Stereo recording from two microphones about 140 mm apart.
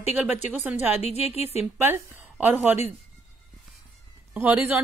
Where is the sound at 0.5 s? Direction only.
10° right (ahead or behind).